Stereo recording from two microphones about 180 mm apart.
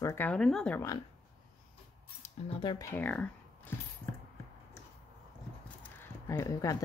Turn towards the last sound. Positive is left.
turn(degrees=15)  # may be behind; listen again after turning